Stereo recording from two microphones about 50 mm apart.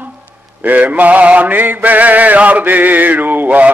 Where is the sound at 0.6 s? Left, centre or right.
Right.